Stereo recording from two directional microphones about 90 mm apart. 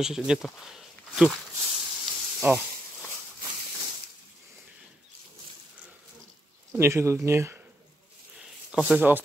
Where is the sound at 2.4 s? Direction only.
25° right (ahead or behind).